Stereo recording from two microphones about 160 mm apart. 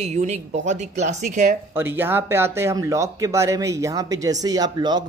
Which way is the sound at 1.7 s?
15° right (ahead or behind).